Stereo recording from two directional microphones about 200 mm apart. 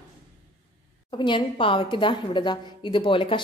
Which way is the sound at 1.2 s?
25° left (ahead or behind).